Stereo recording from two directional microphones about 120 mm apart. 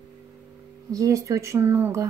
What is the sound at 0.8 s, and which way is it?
Speech, 25° right (ahead or behind).